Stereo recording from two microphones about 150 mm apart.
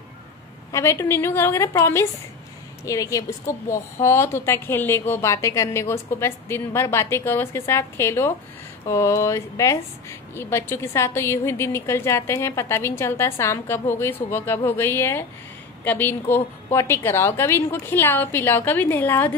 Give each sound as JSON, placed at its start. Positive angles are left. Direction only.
{"t": 0.7, "sound": "a woman's voice", "side_deg": 20}